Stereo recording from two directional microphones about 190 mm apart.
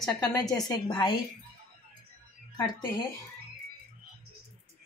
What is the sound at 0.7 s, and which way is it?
Speech, 25° left (ahead or behind).